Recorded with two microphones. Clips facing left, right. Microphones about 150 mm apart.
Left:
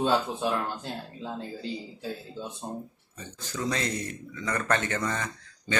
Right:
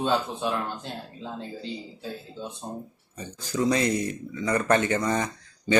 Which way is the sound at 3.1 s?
10° right (ahead or behind).